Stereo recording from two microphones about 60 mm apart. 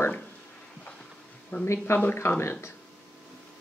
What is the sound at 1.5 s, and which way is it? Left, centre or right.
Speech, left.